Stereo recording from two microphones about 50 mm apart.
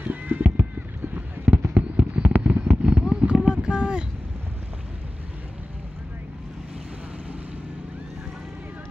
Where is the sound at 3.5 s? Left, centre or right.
Centre.